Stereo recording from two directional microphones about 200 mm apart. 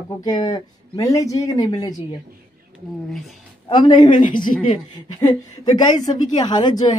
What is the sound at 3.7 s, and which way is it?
Speech, 20° left (ahead or behind).